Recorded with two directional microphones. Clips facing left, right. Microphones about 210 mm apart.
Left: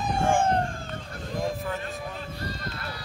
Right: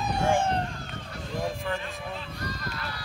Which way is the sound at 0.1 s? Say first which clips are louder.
Left 2 dB; 50° left (ahead or behind).